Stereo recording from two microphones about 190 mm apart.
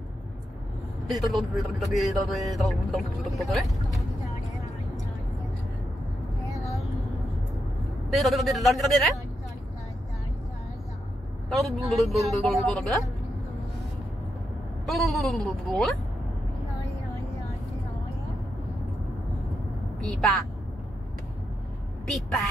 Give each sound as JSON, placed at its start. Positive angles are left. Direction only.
{"t": 1.1, "sound": "speech", "side_deg": 0}
{"t": 6.6, "sound": "vehicle", "side_deg": 0}
{"t": 8.1, "sound": "speech", "side_deg": 0}
{"t": 11.4, "sound": "speech", "side_deg": 0}
{"t": 14.9, "sound": "speech", "side_deg": 0}
{"t": 20.1, "sound": "speech", "side_deg": 0}
{"t": 22.0, "sound": "speech", "side_deg": 0}